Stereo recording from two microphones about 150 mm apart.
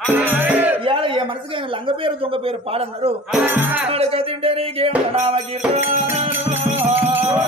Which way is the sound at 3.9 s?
40° right (ahead or behind).